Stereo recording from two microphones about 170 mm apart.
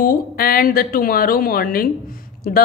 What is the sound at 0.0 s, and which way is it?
Speech, 60° left (ahead or behind).